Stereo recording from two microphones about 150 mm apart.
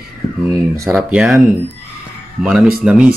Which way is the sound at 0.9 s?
10° right (ahead or behind).